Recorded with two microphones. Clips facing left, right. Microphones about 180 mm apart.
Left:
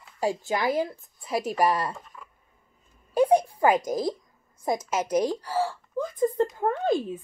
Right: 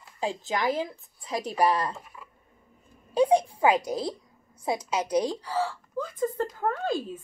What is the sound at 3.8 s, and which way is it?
A woman's voice, 45° left (ahead or behind).